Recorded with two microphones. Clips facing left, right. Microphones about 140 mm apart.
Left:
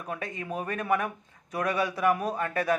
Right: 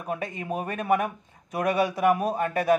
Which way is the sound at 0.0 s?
20° right (ahead or behind).